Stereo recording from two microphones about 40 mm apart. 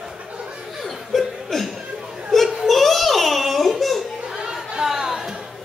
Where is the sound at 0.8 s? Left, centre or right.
Centre.